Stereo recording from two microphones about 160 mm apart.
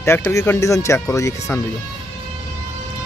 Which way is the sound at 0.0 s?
15° left (ahead or behind).